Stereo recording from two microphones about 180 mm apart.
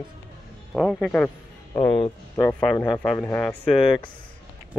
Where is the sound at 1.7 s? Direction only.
25° left (ahead or behind).